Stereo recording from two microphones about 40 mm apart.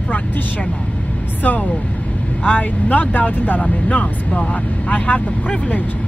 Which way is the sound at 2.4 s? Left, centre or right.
Left.